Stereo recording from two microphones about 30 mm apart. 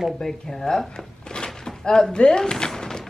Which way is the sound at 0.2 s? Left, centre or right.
Centre.